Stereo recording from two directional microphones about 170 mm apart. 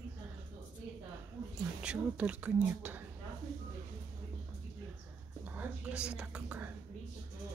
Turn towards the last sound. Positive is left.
turn(degrees=-5)  # may be behind; listen again after turning